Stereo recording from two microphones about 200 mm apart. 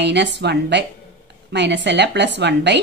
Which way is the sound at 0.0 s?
60° right (ahead or behind).